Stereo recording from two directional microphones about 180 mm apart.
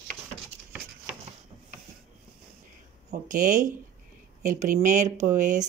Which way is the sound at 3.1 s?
45° right (ahead or behind).